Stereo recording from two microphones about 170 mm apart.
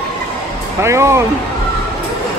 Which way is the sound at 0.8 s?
15° right (ahead or behind).